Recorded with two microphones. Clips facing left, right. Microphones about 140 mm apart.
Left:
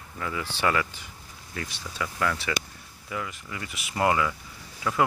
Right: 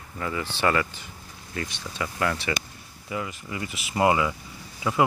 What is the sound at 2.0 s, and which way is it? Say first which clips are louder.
Speech: right 1 dB; 10° right (ahead or behind).